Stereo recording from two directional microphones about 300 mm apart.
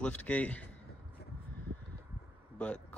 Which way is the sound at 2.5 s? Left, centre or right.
Centre.